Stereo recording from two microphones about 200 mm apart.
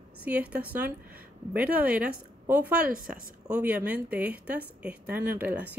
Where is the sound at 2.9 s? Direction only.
45° right (ahead or behind).